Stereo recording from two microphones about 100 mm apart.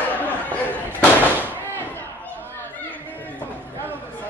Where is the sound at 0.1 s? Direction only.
15° left (ahead or behind).